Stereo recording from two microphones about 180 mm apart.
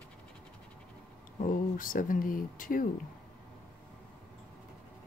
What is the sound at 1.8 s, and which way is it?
Speech, 50° left (ahead or behind).